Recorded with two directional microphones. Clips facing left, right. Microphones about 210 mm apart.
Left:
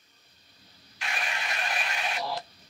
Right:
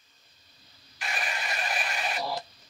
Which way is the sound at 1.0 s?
5° right (ahead or behind).